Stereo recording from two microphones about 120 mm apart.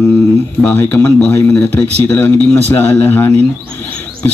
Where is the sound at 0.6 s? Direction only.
15° left (ahead or behind).